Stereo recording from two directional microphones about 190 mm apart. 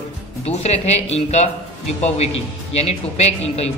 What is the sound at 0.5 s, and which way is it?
A man's voice, 35° left (ahead or behind).